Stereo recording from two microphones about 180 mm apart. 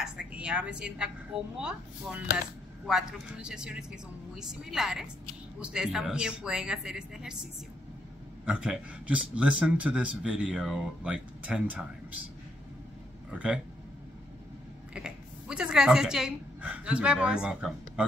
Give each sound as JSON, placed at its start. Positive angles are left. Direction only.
{"t": 0.0, "sound": "speech", "side_deg": -5}
{"t": 8.5, "sound": "speech", "side_deg": -5}
{"t": 13.3, "sound": "speech", "side_deg": -5}
{"t": 15.0, "sound": "a woman's voice", "side_deg": -5}